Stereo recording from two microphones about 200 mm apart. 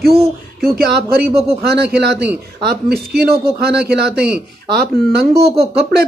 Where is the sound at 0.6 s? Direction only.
50° right (ahead or behind).